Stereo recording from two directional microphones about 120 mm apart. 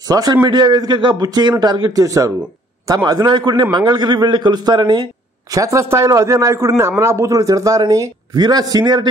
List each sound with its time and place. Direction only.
0.1 s a man's voice: 35° right (ahead or behind)